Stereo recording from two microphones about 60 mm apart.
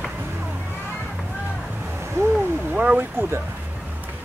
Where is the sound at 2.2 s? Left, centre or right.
Right.